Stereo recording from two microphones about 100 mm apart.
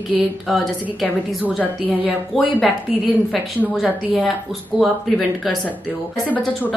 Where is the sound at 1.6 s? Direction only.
15° right (ahead or behind).